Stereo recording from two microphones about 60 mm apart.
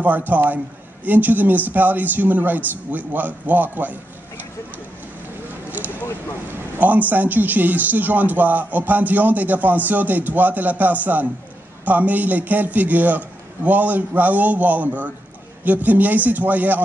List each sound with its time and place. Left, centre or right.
0.0 s a man's voice: right
6.8 s a man's voice: right